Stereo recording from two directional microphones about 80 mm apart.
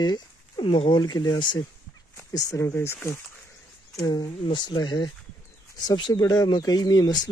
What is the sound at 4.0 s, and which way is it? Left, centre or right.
Speech, left.